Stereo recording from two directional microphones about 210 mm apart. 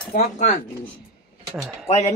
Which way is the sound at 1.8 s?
30° left (ahead or behind).